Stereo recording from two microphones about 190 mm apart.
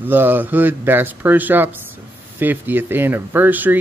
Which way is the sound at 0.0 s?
10° right (ahead or behind).